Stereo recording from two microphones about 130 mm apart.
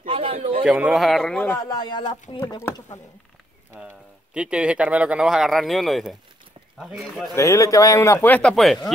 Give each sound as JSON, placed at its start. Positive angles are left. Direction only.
{"t": 0.0, "sound": "a sound", "side_deg": -45}
{"t": 0.7, "sound": "a man's voice", "side_deg": -5}
{"t": 1.6, "sound": "speech", "side_deg": 30}
{"t": 4.3, "sound": "a man's voice", "side_deg": -10}
{"t": 7.3, "sound": "speech", "side_deg": 20}